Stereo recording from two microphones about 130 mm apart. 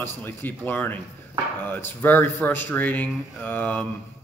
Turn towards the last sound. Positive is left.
turn(degrees=10)  # may be behind; listen again after turning